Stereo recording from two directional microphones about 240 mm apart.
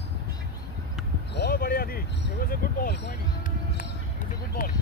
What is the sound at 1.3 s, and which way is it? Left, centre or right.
Speech, left.